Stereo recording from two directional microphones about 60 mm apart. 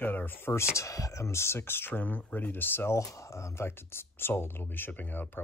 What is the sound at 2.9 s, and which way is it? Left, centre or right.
Speech, left.